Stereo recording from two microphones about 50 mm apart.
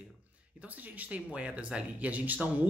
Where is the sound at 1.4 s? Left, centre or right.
Right.